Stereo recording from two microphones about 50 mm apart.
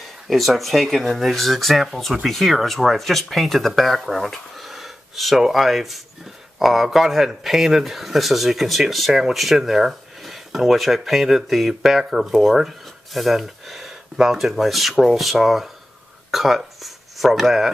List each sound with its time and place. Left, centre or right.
0.3 s speech: centre